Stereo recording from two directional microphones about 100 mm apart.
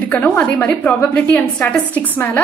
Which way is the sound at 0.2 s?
15° left (ahead or behind).